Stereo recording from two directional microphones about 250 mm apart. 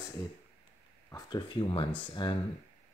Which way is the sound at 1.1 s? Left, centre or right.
Centre.